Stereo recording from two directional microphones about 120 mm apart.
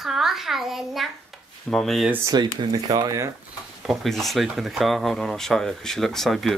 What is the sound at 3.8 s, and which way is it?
Speech, centre (ahead or behind).